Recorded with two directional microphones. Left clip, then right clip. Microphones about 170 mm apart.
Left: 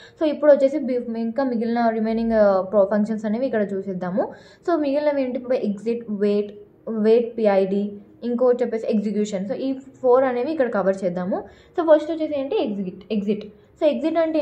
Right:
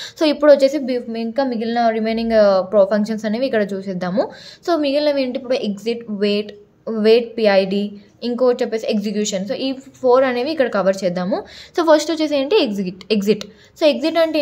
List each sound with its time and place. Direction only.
0.0 s a woman's voice: 50° right (ahead or behind); by 11.4 s 35° right (ahead or behind)
11.7 s a woman's voice: 60° right (ahead or behind); by 13.5 s 85° right
13.7 s a woman's voice: 45° right (ahead or behind)